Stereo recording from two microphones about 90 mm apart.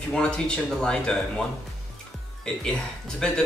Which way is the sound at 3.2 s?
10° left (ahead or behind).